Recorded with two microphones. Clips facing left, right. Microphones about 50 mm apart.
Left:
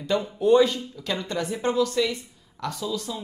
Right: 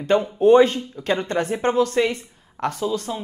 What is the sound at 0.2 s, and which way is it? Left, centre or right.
Speech, right.